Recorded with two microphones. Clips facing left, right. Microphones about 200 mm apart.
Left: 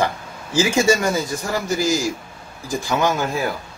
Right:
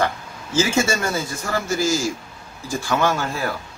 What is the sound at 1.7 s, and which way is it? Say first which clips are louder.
A man's voice: left 1 dB; 15° left (ahead or behind).